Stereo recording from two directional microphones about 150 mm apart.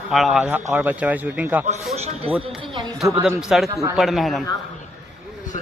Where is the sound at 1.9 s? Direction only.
45° right (ahead or behind).